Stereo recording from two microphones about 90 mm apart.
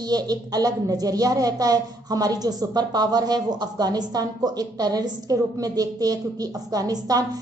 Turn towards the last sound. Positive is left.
turn(degrees=-45)  # may be behind; listen again after turning